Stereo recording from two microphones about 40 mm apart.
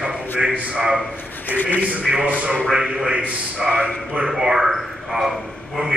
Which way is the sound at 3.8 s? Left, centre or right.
Right.